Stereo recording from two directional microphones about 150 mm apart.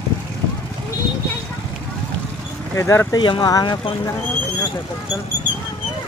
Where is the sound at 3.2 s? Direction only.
30° left (ahead or behind).